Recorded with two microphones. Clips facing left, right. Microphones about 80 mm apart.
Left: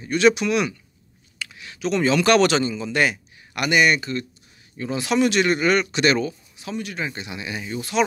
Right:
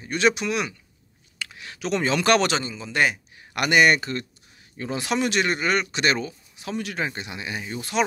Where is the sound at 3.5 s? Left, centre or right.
Right.